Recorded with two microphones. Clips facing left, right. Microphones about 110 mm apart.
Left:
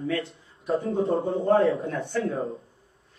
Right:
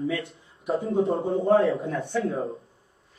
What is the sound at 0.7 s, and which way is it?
A man's voice, centre (ahead or behind).